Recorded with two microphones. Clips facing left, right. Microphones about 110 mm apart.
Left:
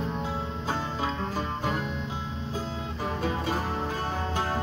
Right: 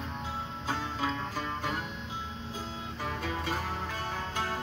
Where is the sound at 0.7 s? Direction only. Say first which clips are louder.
Left 2 dB; 30° left (ahead or behind).